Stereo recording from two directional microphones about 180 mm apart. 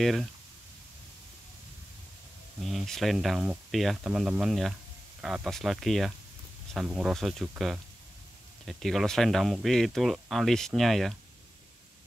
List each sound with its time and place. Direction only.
0.0 s speech: centre (ahead or behind)
2.6 s speech: centre (ahead or behind)